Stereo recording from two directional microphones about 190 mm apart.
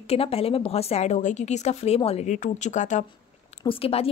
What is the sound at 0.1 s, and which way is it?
A woman's voice, 30° left (ahead or behind).